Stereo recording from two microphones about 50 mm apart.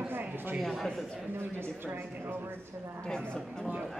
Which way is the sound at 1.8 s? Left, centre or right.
Right.